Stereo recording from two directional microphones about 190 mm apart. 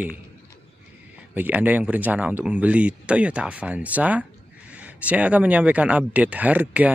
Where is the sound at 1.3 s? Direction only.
10° right (ahead or behind).